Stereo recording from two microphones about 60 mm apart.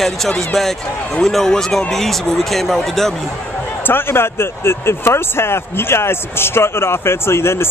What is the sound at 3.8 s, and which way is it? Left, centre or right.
A man's voice, left.